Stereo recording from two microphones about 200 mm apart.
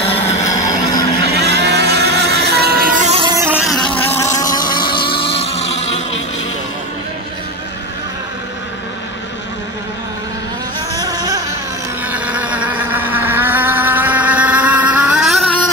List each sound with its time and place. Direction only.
0.5 s vehicle: 15° left (ahead or behind)
1.2 s vehicle: 55° right (ahead or behind)
3.1 s music: 25° right (ahead or behind)
3.3 s motorboat: 10° right (ahead or behind); by 6.0 s 30° left (ahead or behind)
11.0 s a sound: 20° right (ahead or behind)
12.1 s vehicle: 5° right (ahead or behind)